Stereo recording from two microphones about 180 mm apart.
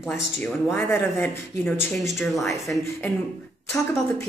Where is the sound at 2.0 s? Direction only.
Centre (ahead or behind).